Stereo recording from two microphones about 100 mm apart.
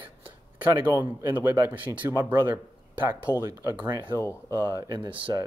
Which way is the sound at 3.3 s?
35° left (ahead or behind).